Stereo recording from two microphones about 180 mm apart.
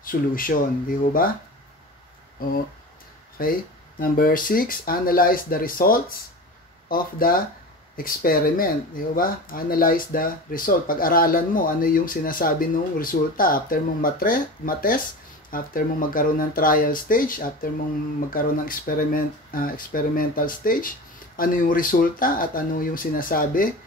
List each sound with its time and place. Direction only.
0.0 s speech: 50° left (ahead or behind)
3.4 s speech: 50° left (ahead or behind)